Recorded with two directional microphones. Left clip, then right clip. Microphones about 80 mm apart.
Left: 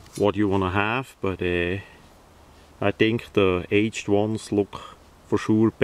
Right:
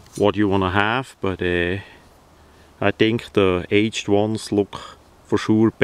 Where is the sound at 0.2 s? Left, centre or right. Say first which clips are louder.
Right 4 dB; right.